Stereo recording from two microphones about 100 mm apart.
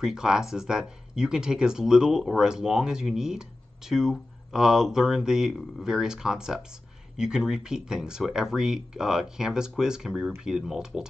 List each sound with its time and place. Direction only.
0.0 s speech: 5° right (ahead or behind)